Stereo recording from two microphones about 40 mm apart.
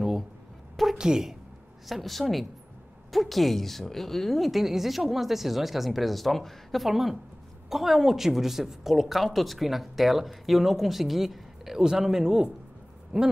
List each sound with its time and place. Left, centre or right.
0.9 s a woman's voice: centre
1.9 s a woman's voice: centre
13.1 s owl: right